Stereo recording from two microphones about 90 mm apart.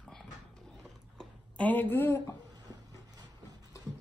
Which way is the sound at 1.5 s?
20° left (ahead or behind).